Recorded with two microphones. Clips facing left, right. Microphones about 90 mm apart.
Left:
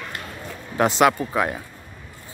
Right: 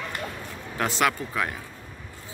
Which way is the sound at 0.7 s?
20° left (ahead or behind).